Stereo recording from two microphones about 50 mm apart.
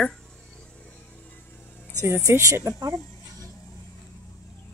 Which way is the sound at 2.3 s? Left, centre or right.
Right.